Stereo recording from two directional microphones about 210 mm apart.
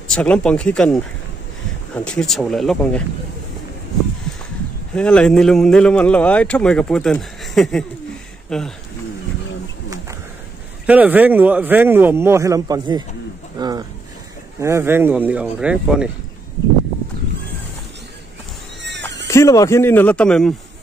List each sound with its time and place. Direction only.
0.1 s a man's voice: 5° left (ahead or behind)
2.0 s a man's voice: centre (ahead or behind)
4.9 s a man's voice: 5° left (ahead or behind)
10.9 s speech: 5° right (ahead or behind)
13.6 s a sound: 20° right (ahead or behind)
14.6 s speech: 15° right (ahead or behind)
18.9 s cat: 55° right (ahead or behind)
19.2 s speech: 15° left (ahead or behind)